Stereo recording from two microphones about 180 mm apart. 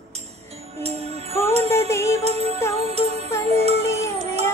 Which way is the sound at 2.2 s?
35° right (ahead or behind).